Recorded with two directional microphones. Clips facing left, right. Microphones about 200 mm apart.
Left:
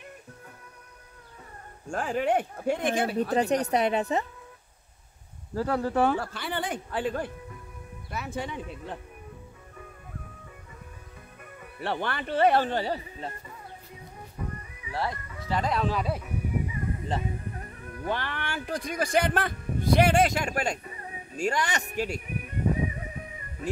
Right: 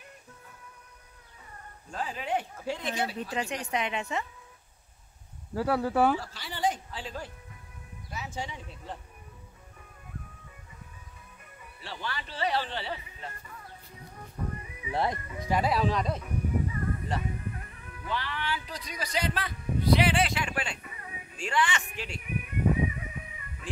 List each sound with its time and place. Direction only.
1.9 s speech: 50° left (ahead or behind)
3.3 s a woman's voice: 40° left (ahead or behind)
5.5 s speech: 5° right (ahead or behind)
6.1 s speech: 55° left (ahead or behind)
11.6 s speech: 60° left (ahead or behind); by 13.3 s 40° left (ahead or behind)
14.8 s speech: 20° right (ahead or behind); by 16.8 s 10° left (ahead or behind)
17.1 s music: 30° left (ahead or behind)